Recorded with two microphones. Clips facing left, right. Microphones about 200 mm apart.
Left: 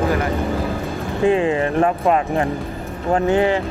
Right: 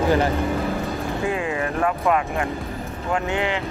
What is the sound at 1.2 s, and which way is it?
Speech, 30° left (ahead or behind).